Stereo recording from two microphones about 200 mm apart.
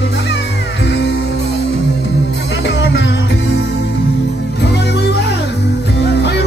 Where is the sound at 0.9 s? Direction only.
55° left (ahead or behind).